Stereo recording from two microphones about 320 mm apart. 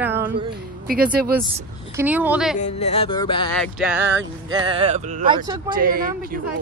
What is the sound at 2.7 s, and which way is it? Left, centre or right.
Music, centre.